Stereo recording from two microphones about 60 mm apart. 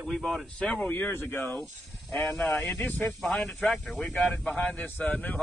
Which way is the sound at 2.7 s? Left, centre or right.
Left.